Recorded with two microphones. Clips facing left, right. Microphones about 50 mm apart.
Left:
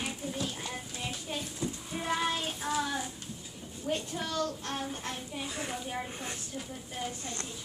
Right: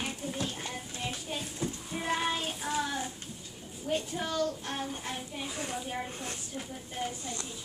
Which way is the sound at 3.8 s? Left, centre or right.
Centre.